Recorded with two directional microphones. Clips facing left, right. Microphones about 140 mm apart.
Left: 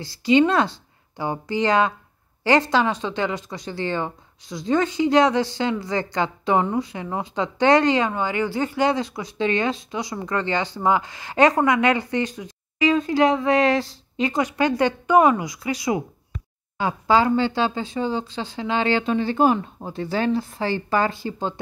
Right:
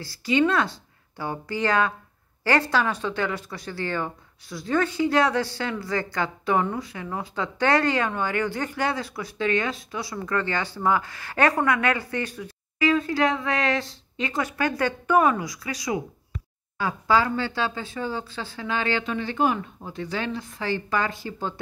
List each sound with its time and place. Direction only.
0.0 s a woman's voice: 20° left (ahead or behind)
14.3 s a woman's voice: 20° left (ahead or behind)